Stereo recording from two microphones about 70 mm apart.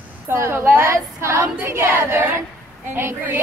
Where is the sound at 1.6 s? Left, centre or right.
Right.